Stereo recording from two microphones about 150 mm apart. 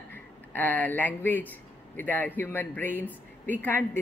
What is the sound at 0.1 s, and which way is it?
Speech, 10° left (ahead or behind).